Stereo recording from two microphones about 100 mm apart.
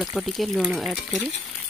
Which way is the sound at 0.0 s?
Centre (ahead or behind).